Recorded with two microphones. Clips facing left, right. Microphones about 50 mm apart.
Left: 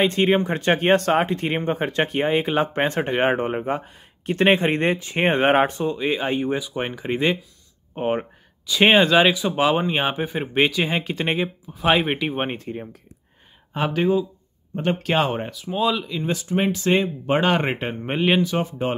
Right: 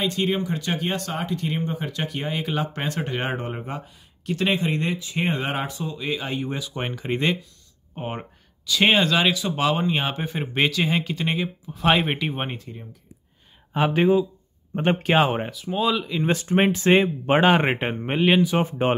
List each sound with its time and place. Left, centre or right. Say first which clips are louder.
0.0 s speech: left 5 dB; left
6.6 s speech: left 3 dB; centre
7.9 s speech: left 8 dB; left
11.7 s speech: left 1 dB; centre
12.5 s speech: left 7 dB; left
13.9 s speech: right 1 dB; right
15.1 s speech: right 2 dB; centre
15.5 s speech: left 1 dB; centre
16.3 s speech: right 2 dB; right
16.9 s speech: right 2 dB; right
18.0 s speech: even; centre
18.6 s speech: right 2 dB; right